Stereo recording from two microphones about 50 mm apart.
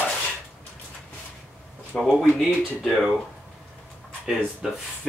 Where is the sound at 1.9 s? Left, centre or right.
Left.